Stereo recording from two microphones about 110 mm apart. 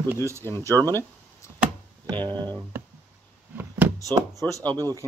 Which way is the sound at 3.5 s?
15° right (ahead or behind).